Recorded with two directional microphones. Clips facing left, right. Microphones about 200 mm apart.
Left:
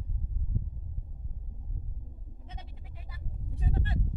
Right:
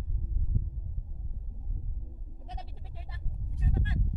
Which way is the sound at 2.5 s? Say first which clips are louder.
Right 4 dB; 35° right (ahead or behind).